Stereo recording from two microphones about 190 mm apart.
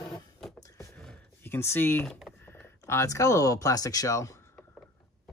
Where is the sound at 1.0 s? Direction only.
5° left (ahead or behind).